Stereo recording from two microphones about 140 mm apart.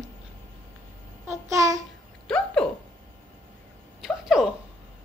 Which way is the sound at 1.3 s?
20° right (ahead or behind).